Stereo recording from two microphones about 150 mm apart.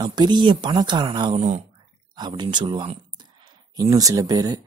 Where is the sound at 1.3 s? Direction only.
50° right (ahead or behind).